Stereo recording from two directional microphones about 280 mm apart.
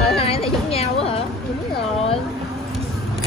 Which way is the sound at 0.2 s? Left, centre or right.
Left.